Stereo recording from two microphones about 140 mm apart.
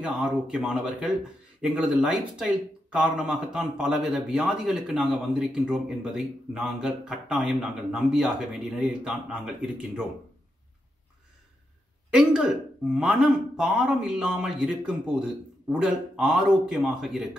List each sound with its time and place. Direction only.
0.0 s speech: 5° right (ahead or behind)
12.1 s speech: 5° right (ahead or behind)